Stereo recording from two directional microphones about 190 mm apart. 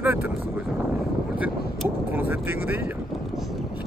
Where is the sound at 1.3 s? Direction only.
5° right (ahead or behind).